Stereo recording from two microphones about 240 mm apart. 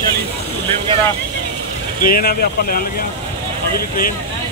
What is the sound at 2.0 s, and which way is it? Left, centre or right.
Speech, left.